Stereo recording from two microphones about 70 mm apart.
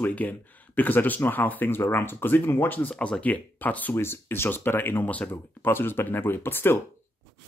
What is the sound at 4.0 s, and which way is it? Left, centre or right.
Speech, left.